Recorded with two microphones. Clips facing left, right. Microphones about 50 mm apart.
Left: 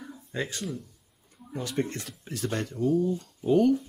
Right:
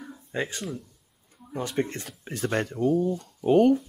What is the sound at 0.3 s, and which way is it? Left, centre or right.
Speech, right.